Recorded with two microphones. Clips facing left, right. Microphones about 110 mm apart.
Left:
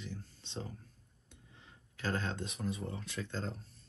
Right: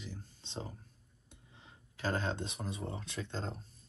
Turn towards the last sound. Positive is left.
turn(degrees=-30)  # may be behind; listen again after turning